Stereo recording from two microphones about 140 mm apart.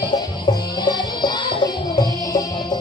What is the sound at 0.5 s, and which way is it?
Music, 30° left (ahead or behind).